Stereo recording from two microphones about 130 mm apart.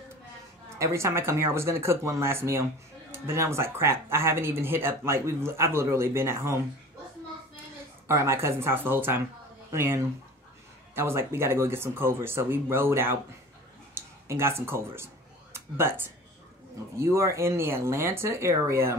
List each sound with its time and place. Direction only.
0.7 s speech: 20° right (ahead or behind)
8.1 s speech: 20° right (ahead or behind)